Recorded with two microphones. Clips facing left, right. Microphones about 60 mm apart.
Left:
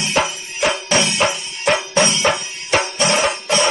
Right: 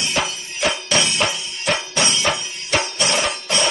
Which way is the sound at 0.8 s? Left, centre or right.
Left.